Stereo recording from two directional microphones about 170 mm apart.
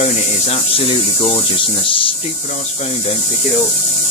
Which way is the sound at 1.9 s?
30° left (ahead or behind).